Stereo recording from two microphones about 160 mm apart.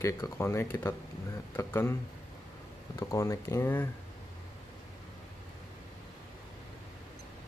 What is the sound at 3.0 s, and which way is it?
Speech, 20° left (ahead or behind).